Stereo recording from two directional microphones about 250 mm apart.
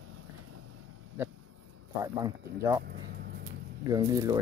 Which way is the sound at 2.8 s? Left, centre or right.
Right.